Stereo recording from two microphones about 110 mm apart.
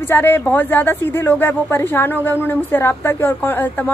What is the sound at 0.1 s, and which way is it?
A woman's voice, 20° left (ahead or behind).